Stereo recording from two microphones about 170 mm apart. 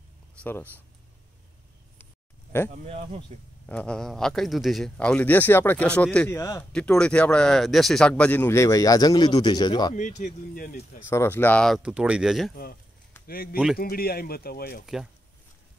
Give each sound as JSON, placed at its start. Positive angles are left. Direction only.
{"t": 0.4, "sound": "speech", "side_deg": 10}
{"t": 2.8, "sound": "speech", "side_deg": -35}
{"t": 3.6, "sound": "speech", "side_deg": 5}
{"t": 6.6, "sound": "speech", "side_deg": 5}
{"t": 9.9, "sound": "speech", "side_deg": 45}
{"t": 11.1, "sound": "speech", "side_deg": 15}
{"t": 13.3, "sound": "speech", "side_deg": 60}